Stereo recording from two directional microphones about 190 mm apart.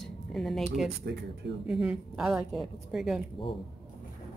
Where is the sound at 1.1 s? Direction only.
60° right (ahead or behind).